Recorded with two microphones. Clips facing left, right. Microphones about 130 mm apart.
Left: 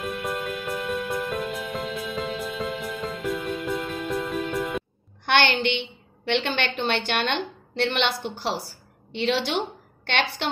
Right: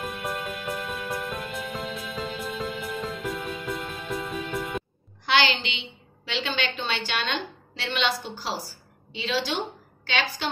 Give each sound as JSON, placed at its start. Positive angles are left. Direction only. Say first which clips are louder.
{"t": 0.0, "sound": "music", "louder": "left 3 dB", "side_deg": 0}
{"t": 5.2, "sound": "a woman's voice", "louder": "left 3 dB", "side_deg": 55}